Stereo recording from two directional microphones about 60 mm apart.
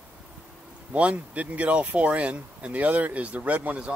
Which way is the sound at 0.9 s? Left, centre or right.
Right.